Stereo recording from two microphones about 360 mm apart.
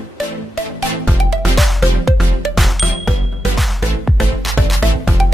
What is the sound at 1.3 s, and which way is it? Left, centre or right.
Music, centre.